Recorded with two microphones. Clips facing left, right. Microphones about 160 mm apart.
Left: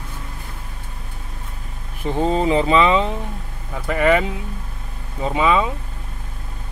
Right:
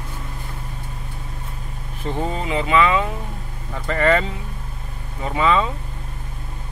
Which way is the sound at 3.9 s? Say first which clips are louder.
Left 1 dB; 10° left (ahead or behind).